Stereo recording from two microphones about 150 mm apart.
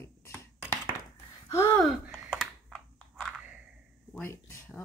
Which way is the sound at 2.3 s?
Centre (ahead or behind).